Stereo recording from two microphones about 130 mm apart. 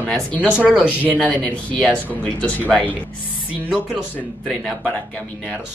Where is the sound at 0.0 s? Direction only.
10° left (ahead or behind).